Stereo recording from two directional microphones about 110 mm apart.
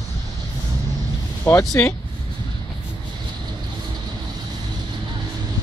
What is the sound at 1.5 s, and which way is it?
Speech, 15° left (ahead or behind).